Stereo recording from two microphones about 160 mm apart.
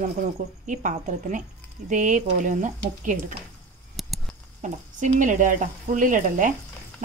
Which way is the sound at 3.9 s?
Centre (ahead or behind).